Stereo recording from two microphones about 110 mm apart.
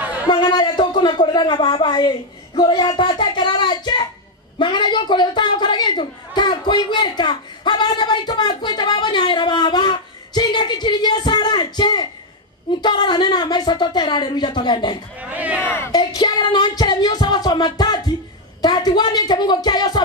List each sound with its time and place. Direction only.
0.0 s a sound: 15° right (ahead or behind)
0.3 s a man's voice: 40° left (ahead or behind)
15.1 s speech: 15° right (ahead or behind)
15.9 s music: 45° left (ahead or behind)